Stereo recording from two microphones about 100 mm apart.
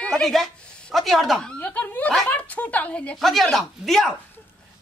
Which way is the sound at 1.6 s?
15° left (ahead or behind).